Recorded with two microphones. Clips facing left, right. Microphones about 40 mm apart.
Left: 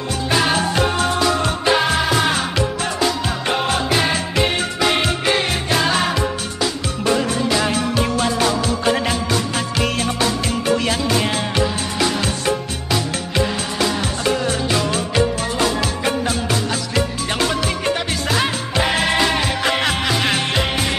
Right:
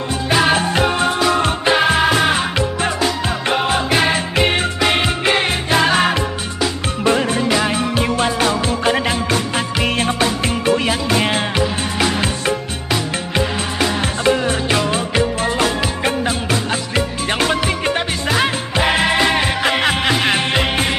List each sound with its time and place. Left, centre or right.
0.3 s music: centre
0.6 s music: right
3.3 s music: centre
3.9 s music: right
12.9 s music: right
18.3 s music: centre